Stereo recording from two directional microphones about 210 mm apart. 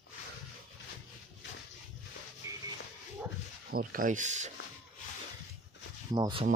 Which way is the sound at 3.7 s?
40° right (ahead or behind).